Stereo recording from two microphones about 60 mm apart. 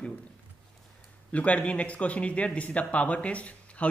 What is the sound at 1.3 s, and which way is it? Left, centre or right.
Speech, left.